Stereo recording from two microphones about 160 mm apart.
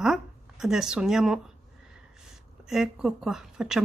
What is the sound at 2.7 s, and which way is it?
A woman's voice, 5° right (ahead or behind).